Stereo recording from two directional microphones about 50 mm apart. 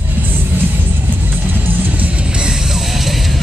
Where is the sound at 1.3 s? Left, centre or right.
Right; by 3.4 s centre.